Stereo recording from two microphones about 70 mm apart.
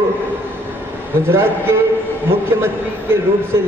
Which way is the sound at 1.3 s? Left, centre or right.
Right.